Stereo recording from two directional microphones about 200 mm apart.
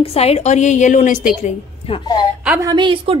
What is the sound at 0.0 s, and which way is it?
A woman's voice, 30° left (ahead or behind).